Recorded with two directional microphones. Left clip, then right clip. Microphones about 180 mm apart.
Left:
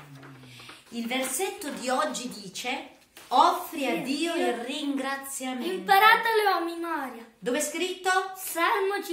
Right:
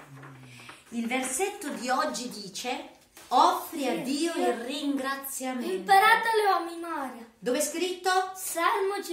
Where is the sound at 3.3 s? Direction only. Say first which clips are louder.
Left 1 dB; 5° left (ahead or behind).